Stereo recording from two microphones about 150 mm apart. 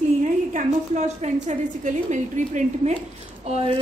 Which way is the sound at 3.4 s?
40° right (ahead or behind).